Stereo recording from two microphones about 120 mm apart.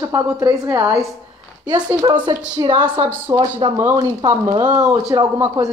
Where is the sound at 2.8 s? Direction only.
15° right (ahead or behind).